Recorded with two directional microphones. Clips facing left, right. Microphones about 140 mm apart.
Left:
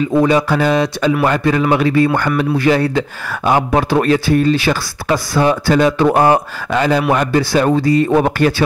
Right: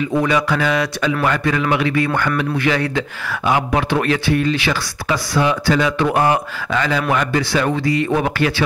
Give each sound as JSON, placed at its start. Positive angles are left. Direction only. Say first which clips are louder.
{"t": 0.2, "sound": "speech", "louder": "left 5 dB", "side_deg": 35}